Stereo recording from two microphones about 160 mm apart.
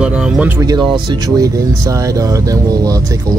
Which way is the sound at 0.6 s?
25° right (ahead or behind).